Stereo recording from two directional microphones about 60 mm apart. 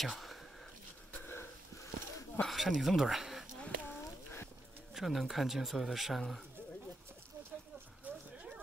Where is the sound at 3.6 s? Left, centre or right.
Left.